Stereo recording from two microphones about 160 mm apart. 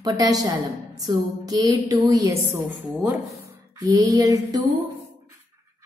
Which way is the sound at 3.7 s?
25° right (ahead or behind).